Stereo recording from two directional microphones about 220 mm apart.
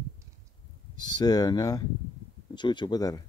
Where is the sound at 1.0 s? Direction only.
20° left (ahead or behind).